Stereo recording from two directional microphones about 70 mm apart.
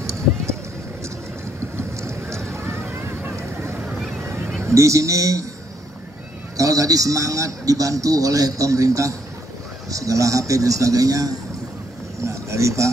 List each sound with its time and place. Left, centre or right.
1.8 s boat: right
3.3 s vehicle: right
4.6 s a man's voice: right
6.5 s a man's voice: right
12.2 s speech: right